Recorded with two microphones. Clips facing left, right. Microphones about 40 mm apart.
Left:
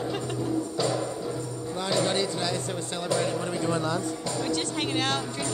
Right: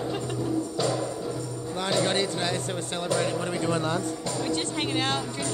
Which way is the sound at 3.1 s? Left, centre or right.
Centre.